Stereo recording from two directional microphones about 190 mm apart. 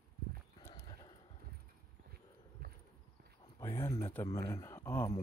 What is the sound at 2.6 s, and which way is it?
Clip-clop, 55° right (ahead or behind).